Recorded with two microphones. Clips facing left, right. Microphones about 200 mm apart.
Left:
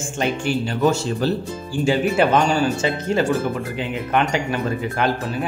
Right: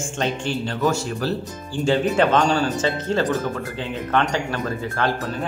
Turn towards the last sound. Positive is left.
turn(degrees=10)  # may be behind; listen again after turning